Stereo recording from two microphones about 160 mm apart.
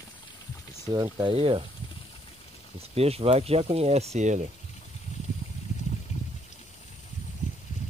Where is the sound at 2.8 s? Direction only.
40° right (ahead or behind).